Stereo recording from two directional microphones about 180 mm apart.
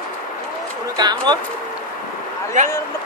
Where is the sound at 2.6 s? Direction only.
45° right (ahead or behind).